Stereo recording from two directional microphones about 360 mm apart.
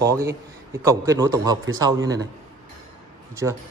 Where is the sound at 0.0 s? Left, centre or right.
Centre.